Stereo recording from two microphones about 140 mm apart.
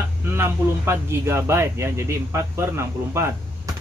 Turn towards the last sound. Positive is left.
turn(degrees=-20)  # may be behind; listen again after turning